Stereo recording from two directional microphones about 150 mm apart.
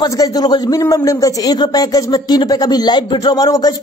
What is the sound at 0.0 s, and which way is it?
Speech, 25° left (ahead or behind).